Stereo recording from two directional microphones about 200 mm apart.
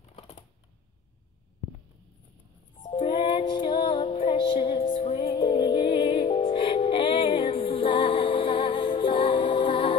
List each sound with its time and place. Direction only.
2.8 s music: 25° left (ahead or behind)